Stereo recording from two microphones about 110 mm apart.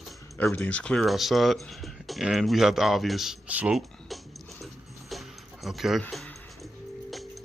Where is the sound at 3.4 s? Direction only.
15° right (ahead or behind).